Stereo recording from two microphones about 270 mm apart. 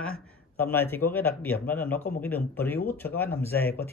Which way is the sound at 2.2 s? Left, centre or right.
Centre.